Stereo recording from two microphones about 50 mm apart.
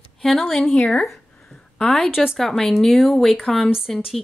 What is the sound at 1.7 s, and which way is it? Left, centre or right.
Speech, centre.